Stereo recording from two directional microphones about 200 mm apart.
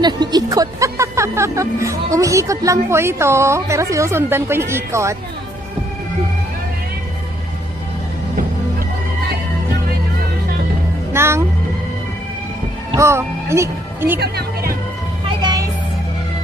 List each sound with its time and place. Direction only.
0.0 s speech: 20° right (ahead or behind)
11.1 s speech: 10° right (ahead or behind)
12.9 s speech: 15° right (ahead or behind)
14.2 s music: 50° right (ahead or behind)
15.2 s music: 20° right (ahead or behind)